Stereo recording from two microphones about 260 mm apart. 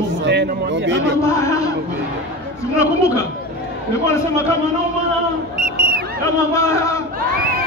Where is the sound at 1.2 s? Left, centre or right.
Centre.